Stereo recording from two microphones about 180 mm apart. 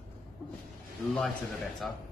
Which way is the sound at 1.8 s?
5° left (ahead or behind).